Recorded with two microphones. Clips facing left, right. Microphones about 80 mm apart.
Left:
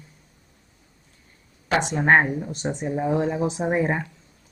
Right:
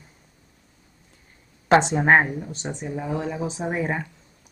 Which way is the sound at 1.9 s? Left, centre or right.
Centre.